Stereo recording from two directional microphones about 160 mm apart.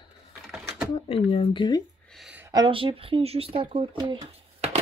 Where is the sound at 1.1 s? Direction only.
35° left (ahead or behind).